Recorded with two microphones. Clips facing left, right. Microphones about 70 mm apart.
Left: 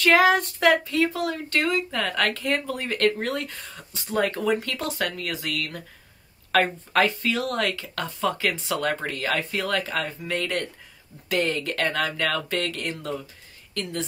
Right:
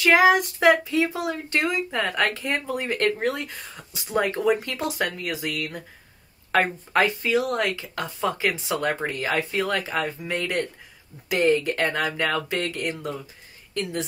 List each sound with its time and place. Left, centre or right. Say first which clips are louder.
0.0 s speech: right 1 dB; centre